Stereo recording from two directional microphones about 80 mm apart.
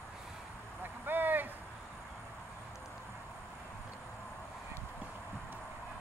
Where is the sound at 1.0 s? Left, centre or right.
Right.